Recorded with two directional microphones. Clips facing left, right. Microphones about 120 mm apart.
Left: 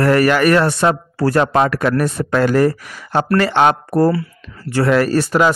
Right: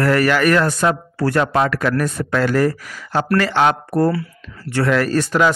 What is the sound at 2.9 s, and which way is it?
Speech, 15° left (ahead or behind).